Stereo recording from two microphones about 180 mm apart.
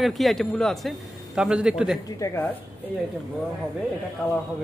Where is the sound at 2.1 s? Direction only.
15° left (ahead or behind).